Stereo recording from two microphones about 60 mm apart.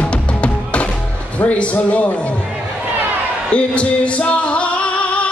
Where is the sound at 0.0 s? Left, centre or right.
Left.